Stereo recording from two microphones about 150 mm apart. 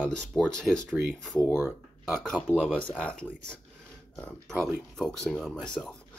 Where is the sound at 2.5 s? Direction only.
10° left (ahead or behind).